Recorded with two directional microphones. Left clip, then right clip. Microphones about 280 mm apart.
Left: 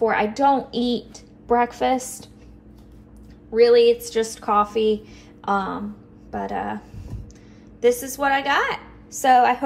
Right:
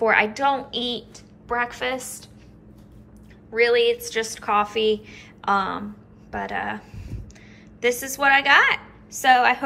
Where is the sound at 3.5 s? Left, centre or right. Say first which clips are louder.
Left 4 dB; centre.